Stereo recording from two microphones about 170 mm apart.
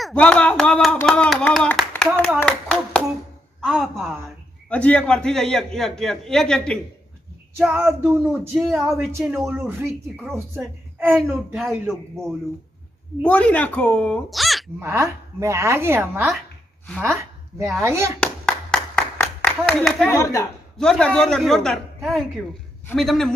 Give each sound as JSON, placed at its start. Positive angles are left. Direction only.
{"t": 0.0, "sound": "clapping", "side_deg": 5}
{"t": 3.6, "sound": "a sound", "side_deg": 0}
{"t": 4.6, "sound": "a man's voice", "side_deg": 5}
{"t": 7.5, "sound": "a woman's voice", "side_deg": -10}
{"t": 13.2, "sound": "speech", "side_deg": 5}
{"t": 14.8, "sound": "a woman's voice", "side_deg": -15}
{"t": 17.7, "sound": "a woman's voice", "side_deg": -15}
{"t": 18.2, "sound": "clapping", "side_deg": 5}
{"t": 20.2, "sound": "speech", "side_deg": 15}
{"t": 20.7, "sound": "a man's voice", "side_deg": 5}